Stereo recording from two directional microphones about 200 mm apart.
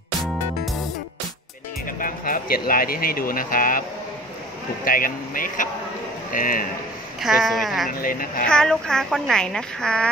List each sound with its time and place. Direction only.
0.2 s music: centre (ahead or behind)
1.9 s speech: 45° left (ahead or behind)
4.8 s speech: 45° left (ahead or behind)
7.2 s a woman's voice: centre (ahead or behind)
7.9 s speech: 45° left (ahead or behind)
8.5 s a woman's voice: 5° left (ahead or behind)